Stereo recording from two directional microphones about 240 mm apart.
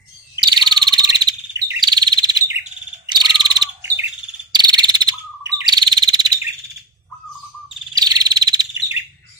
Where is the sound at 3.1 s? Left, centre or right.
Centre.